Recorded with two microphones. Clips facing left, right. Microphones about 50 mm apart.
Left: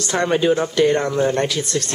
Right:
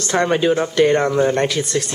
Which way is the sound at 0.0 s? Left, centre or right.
Centre.